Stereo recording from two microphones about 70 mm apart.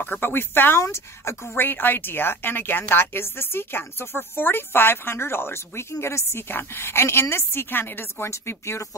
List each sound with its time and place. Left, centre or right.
0.0 s speech: left
1.6 s speech: left
8.3 s speech: left